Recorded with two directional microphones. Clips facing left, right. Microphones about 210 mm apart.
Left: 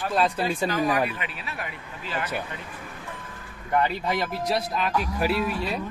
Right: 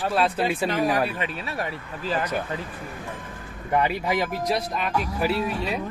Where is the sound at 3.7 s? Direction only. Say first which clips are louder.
Right 1 dB; 15° right (ahead or behind).